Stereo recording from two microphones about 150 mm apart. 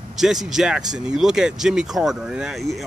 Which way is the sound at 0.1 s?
5° right (ahead or behind).